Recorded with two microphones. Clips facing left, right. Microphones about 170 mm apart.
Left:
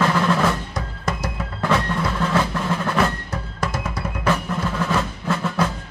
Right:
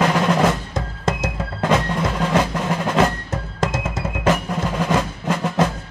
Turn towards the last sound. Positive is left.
turn(degrees=-20)  # may be behind; listen again after turning